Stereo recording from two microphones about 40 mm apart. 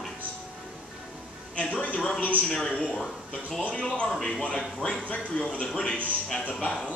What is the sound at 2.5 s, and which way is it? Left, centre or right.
Speech, centre.